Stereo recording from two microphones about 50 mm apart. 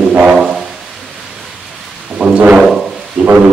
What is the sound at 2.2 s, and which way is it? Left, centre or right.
Music, right.